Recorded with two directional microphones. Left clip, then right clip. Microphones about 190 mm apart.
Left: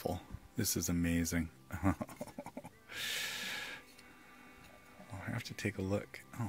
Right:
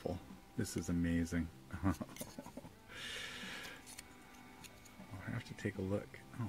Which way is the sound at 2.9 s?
35° left (ahead or behind).